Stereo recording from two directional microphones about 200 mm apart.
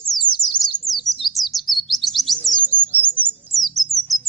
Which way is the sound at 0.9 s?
Centre (ahead or behind).